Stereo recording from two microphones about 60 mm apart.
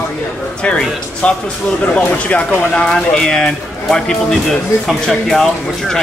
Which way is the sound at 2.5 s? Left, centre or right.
Centre.